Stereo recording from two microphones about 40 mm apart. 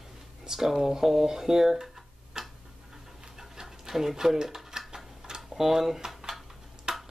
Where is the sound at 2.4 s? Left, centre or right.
Centre.